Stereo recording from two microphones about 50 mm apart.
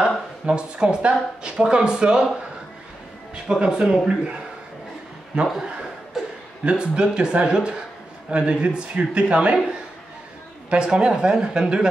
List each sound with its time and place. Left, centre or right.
0.5 s speech: centre
3.4 s speech: centre
5.3 s speech: centre
10.7 s speech: centre